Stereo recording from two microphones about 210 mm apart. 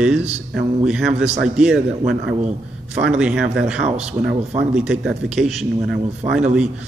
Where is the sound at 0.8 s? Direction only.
5° right (ahead or behind).